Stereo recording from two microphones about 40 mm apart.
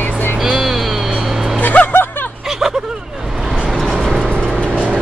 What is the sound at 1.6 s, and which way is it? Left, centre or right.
Music, left.